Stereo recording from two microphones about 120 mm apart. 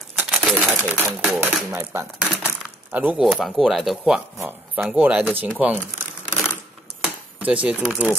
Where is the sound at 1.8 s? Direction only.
20° right (ahead or behind).